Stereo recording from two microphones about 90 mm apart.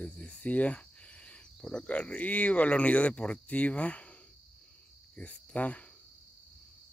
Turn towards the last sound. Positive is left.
turn(degrees=15)  # may be behind; listen again after turning